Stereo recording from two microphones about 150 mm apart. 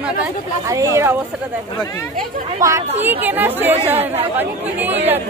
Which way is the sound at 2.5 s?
20° right (ahead or behind).